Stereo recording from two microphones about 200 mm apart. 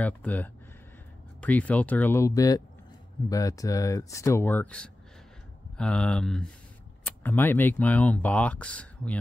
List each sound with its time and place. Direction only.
0.0 s speech: 10° left (ahead or behind)